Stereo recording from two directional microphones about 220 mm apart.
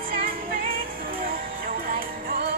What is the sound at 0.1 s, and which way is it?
Music, 40° right (ahead or behind).